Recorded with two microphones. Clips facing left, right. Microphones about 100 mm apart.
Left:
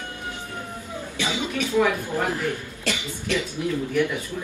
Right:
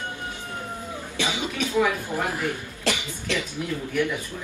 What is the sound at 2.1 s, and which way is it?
Speech, 20° right (ahead or behind).